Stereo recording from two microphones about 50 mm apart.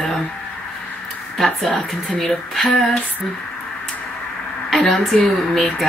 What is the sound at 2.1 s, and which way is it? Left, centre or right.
Speech, centre.